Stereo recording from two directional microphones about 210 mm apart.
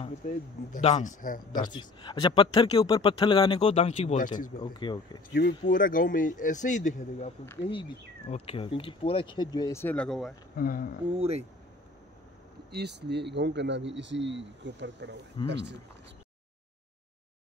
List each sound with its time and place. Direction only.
0.3 s speech: 30° left (ahead or behind)
1.7 s speech: 20° left (ahead or behind)
4.6 s speech: 20° left (ahead or behind)
5.3 s speech: 55° left (ahead or behind)
5.7 s speech: 40° left (ahead or behind); by 10.3 s centre (ahead or behind)
10.5 s speech: 45° left (ahead or behind)
11.1 s speech: 30° right (ahead or behind)
12.7 s speech: 55° right (ahead or behind)